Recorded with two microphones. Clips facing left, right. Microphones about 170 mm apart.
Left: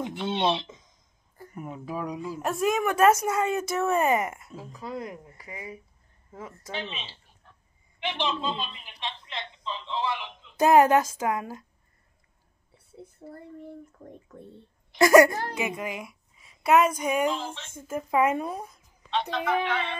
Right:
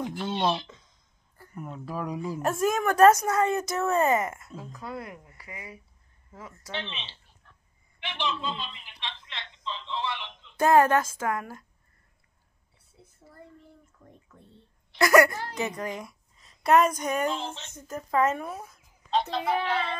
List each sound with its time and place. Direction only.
0.0 s speech: centre (ahead or behind)
0.6 s a sound: 20° left (ahead or behind)
1.4 s speech: 10° left (ahead or behind)
5.2 s a woman's voice: 30° left (ahead or behind)
6.7 s speech: 10° left (ahead or behind)
8.0 s a woman's voice: 20° left (ahead or behind)
10.6 s speech: 15° left (ahead or behind)
13.2 s a child's voice: 40° left (ahead or behind)
14.9 s a woman's voice: 20° left (ahead or behind)
15.5 s a woman's voice: 5° left (ahead or behind)
19.3 s speech: 30° right (ahead or behind)